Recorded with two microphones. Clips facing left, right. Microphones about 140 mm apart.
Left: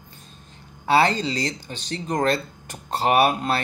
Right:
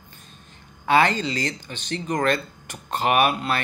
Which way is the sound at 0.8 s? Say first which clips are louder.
Even; 35° left (ahead or behind).